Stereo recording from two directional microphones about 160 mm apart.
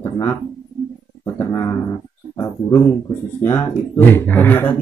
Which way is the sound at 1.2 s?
20° left (ahead or behind).